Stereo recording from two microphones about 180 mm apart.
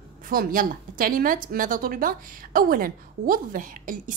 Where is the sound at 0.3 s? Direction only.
50° right (ahead or behind).